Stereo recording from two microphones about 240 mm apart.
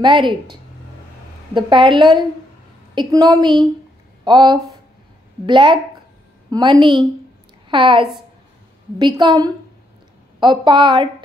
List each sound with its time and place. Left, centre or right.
0.0 s a woman's voice: centre